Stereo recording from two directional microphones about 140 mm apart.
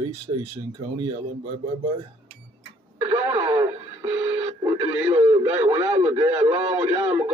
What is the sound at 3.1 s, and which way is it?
Speech, 35° right (ahead or behind).